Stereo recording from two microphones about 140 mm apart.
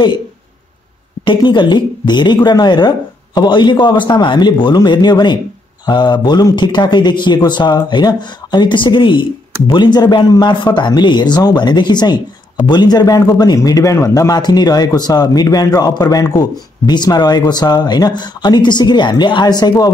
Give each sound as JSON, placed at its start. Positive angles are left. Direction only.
{"t": 1.2, "sound": "a man's voice", "side_deg": 35}